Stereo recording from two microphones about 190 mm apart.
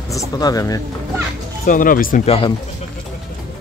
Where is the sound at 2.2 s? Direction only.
30° left (ahead or behind).